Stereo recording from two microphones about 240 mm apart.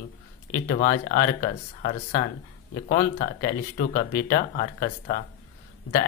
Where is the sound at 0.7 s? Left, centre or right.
Left.